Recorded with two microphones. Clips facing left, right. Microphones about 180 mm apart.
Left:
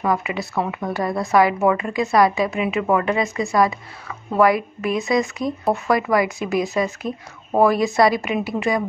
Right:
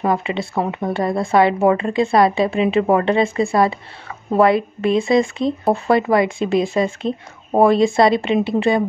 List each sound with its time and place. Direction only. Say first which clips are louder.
0.0 s speech: right 3 dB; 25° right (ahead or behind)